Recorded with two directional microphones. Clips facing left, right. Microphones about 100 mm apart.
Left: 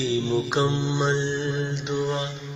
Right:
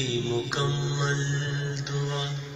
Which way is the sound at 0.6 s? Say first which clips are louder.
Left 6 dB; 30° left (ahead or behind).